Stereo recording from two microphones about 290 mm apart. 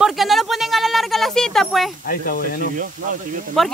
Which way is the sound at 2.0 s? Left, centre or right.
Left.